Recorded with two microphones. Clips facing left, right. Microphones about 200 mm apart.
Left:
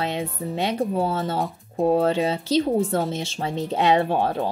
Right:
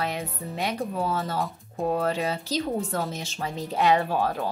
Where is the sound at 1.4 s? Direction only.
Centre (ahead or behind).